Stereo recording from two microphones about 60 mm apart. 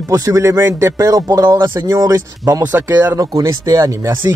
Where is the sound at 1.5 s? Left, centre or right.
Right.